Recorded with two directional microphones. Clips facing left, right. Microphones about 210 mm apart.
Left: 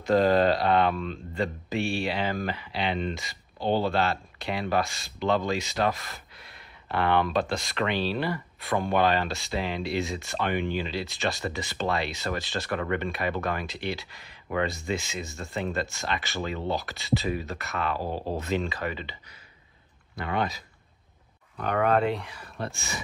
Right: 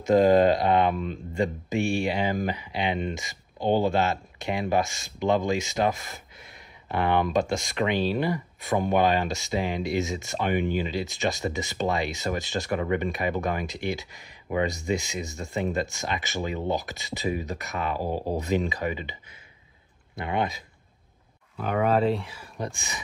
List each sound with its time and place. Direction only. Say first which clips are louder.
0.1 s speech: right 3 dB; 20° right (ahead or behind)
1.7 s speech: right 3 dB; 45° right (ahead or behind)
2.1 s speech: right 3 dB; 15° right (ahead or behind)
20.2 s speech: right 1 dB; 20° right (ahead or behind)
21.5 s speech: right 1 dB; 5° right (ahead or behind)
22.6 s speech: right 1 dB; 15° right (ahead or behind)